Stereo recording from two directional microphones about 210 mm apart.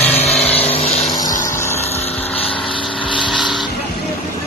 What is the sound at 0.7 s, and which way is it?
Vehicle, 30° left (ahead or behind).